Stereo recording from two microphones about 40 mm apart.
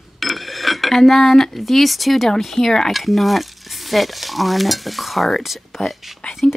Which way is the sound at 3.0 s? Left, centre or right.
Centre.